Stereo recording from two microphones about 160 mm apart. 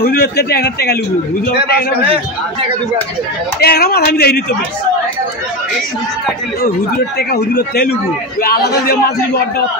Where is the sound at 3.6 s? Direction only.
75° left (ahead or behind).